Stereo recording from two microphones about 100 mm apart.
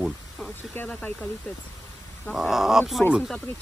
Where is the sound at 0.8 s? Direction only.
10° left (ahead or behind).